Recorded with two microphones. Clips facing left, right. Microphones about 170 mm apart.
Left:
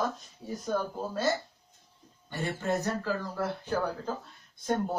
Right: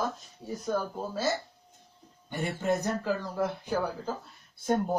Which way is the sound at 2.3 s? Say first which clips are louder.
Right 2 dB; 15° right (ahead or behind).